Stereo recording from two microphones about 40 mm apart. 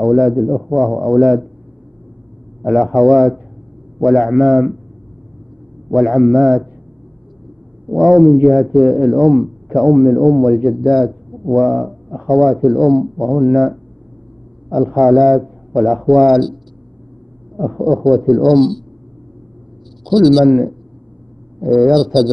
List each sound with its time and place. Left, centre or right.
0.0 s a man's voice: centre
2.6 s a man's voice: centre
5.9 s a man's voice: centre
7.9 s a man's voice: centre
15.0 s a man's voice: centre
17.6 s a man's voice: centre
20.1 s a man's voice: centre